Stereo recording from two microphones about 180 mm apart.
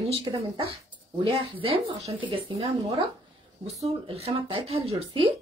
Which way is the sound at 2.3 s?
35° right (ahead or behind).